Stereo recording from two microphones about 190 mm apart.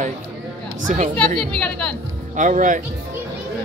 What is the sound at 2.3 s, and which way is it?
Speech, 40° right (ahead or behind).